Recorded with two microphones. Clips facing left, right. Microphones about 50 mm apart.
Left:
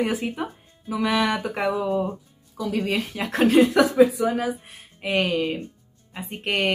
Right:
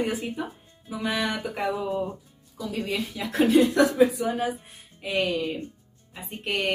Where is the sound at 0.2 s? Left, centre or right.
Left.